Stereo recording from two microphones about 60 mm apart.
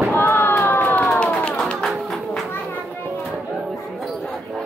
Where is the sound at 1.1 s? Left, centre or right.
Centre.